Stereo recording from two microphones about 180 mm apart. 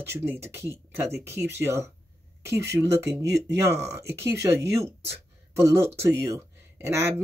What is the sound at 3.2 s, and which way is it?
Speech, 70° right (ahead or behind).